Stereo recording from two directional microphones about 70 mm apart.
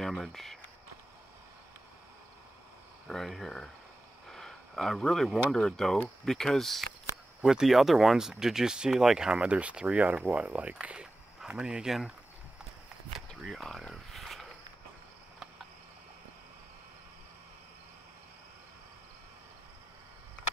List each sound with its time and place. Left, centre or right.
0.0 s speech: centre
3.1 s speech: centre
13.4 s a sound: centre